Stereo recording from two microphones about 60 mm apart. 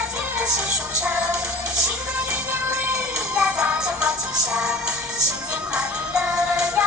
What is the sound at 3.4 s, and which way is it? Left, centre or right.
Music, centre.